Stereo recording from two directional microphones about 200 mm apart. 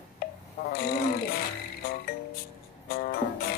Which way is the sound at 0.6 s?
50° left (ahead or behind).